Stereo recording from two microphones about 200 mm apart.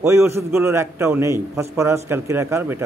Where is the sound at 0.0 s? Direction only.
15° right (ahead or behind).